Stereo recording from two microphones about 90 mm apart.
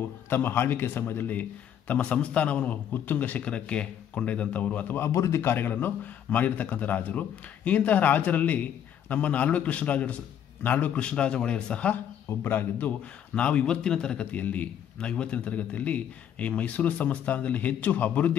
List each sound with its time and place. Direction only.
0.3 s a man's voice: 25° left (ahead or behind)
12.3 s a man's voice: 25° left (ahead or behind)